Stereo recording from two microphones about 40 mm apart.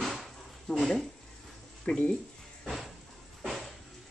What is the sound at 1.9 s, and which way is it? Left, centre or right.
Speech, left.